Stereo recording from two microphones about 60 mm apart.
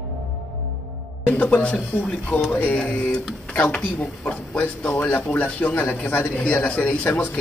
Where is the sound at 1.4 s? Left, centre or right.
Left.